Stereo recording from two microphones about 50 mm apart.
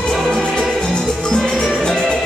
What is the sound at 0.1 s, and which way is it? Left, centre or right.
Music, centre.